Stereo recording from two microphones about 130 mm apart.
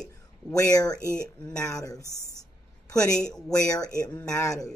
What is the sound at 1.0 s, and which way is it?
Speech, 20° right (ahead or behind).